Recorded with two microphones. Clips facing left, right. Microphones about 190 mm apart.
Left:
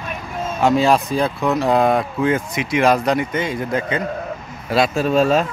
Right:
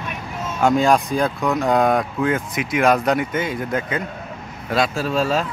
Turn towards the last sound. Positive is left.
turn(degrees=20)  # may be behind; listen again after turning